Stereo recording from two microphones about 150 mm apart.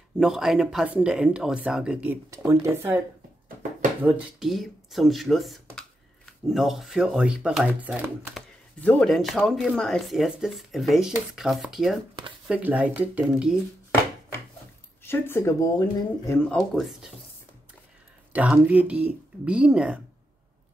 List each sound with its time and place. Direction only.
0.2 s speech: centre (ahead or behind)
2.3 s speech: 20° right (ahead or behind)
4.0 s speech: centre (ahead or behind)
8.7 s speech: 5° left (ahead or behind)
15.0 s speech: 15° left (ahead or behind); by 17.1 s centre (ahead or behind)
18.3 s speech: 10° right (ahead or behind)